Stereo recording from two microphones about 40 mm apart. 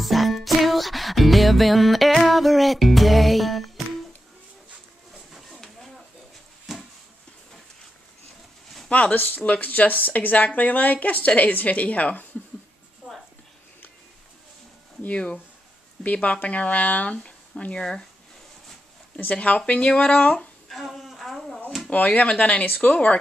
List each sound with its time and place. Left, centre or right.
0.0 s music: centre
5.1 s a sound: centre
9.1 s speech: left
15.0 s speech: left
17.7 s speech: left
19.1 s speech: left
20.6 s a sound: centre
21.8 s speech: left